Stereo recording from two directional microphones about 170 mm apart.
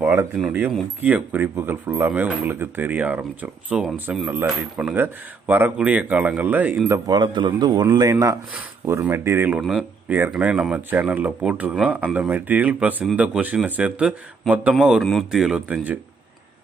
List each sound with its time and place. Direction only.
0.0 s speech: 10° right (ahead or behind)
6.9 s a man's voice: 25° right (ahead or behind)
9.6 s speech: centre (ahead or behind)